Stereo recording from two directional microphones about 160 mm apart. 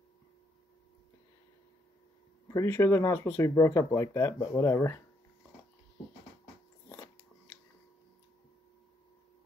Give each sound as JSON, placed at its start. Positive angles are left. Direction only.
{"t": 2.4, "sound": "speech", "side_deg": 20}